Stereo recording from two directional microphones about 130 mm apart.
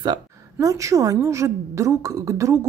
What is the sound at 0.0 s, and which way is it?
Speech, 30° right (ahead or behind).